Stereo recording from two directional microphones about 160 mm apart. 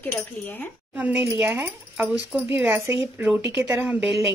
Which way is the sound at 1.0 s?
10° right (ahead or behind).